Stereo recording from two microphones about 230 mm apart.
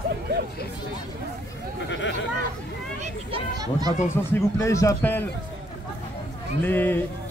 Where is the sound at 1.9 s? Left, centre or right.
Left.